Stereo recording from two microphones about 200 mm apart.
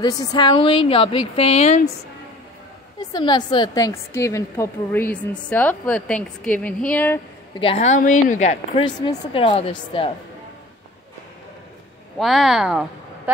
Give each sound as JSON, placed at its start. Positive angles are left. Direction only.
{"t": 0.0, "sound": "speech", "side_deg": 20}
{"t": 3.0, "sound": "a woman's voice", "side_deg": 20}
{"t": 7.6, "sound": "a woman's voice", "side_deg": 30}
{"t": 8.8, "sound": "speech", "side_deg": 25}
{"t": 12.2, "sound": "speech", "side_deg": 0}